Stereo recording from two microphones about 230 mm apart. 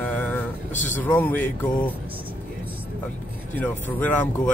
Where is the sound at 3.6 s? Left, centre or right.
Centre.